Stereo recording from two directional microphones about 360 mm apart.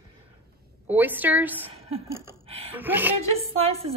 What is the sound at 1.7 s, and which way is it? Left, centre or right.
Speech, centre.